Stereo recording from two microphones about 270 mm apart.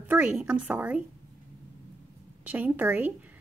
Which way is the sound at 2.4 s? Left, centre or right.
Centre.